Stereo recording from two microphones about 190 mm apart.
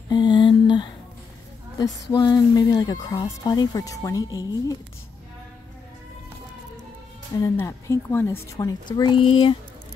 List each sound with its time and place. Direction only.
0.1 s a sound: 25° left (ahead or behind)
1.8 s speech: 20° left (ahead or behind)
7.3 s a woman's voice: 15° left (ahead or behind)